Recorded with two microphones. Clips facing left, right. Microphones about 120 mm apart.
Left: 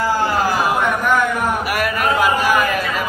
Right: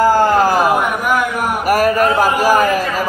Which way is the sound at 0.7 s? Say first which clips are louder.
Right 1 dB; 10° right (ahead or behind).